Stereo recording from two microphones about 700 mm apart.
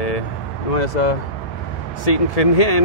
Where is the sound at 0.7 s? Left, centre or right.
Left.